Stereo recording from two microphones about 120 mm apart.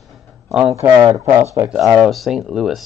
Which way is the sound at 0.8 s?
25° right (ahead or behind).